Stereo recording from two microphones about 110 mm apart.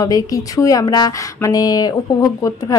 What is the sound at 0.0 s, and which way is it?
A woman's voice, 30° left (ahead or behind).